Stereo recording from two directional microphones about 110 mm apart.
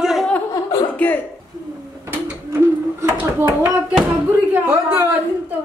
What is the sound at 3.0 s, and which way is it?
Speech, 20° right (ahead or behind).